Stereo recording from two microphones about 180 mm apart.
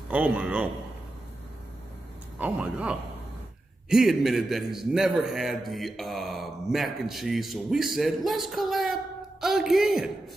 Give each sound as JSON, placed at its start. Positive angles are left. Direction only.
{"t": 0.1, "sound": "speech", "side_deg": -5}
{"t": 2.3, "sound": "a man's voice", "side_deg": -5}